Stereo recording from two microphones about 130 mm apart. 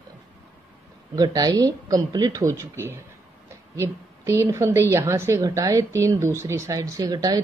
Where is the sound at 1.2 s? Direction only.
30° right (ahead or behind).